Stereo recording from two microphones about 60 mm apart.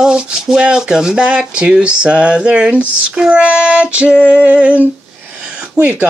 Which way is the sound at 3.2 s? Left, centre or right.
Centre.